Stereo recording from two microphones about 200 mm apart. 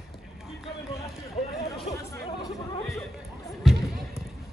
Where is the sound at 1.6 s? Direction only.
15° left (ahead or behind).